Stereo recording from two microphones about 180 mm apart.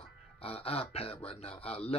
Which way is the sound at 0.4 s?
35° left (ahead or behind).